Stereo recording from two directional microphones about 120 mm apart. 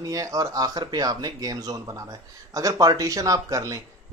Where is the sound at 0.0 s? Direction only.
30° right (ahead or behind).